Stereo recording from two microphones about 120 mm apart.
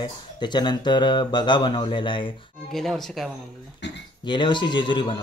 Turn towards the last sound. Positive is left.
turn(degrees=40)  # may be behind; listen again after turning